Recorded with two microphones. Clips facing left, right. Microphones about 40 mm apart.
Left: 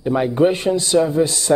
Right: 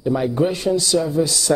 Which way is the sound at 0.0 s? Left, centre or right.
Left.